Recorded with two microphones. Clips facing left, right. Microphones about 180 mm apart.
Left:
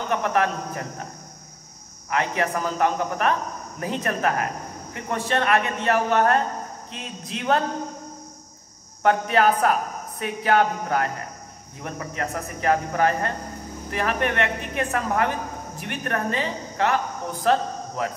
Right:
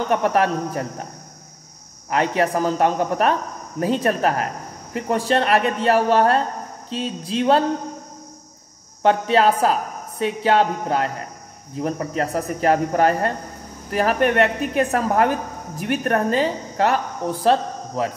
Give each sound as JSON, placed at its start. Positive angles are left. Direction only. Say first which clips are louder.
{"t": 0.1, "sound": "a woman's voice", "louder": "right 3 dB", "side_deg": -35}
{"t": 2.0, "sound": "a woman's voice", "louder": "right 5 dB", "side_deg": -30}
{"t": 9.0, "sound": "a woman's voice", "louder": "right 3 dB", "side_deg": -30}